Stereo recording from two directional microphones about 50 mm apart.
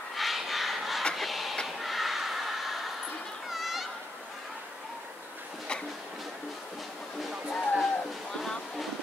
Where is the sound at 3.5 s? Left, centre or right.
Centre.